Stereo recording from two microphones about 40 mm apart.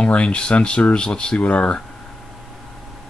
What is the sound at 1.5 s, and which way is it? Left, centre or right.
Speech, left.